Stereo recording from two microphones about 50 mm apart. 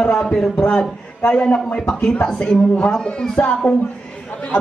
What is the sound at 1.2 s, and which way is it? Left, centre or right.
Speech, left.